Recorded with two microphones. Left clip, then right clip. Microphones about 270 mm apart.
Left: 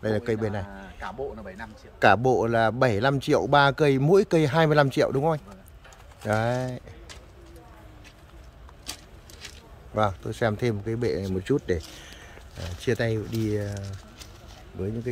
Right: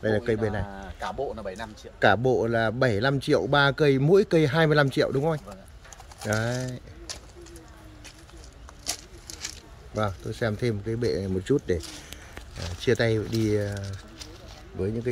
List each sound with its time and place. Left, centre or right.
0.0 s speech: centre
0.7 s speech: right
2.0 s speech: centre
8.8 s a sound: centre
9.9 s speech: centre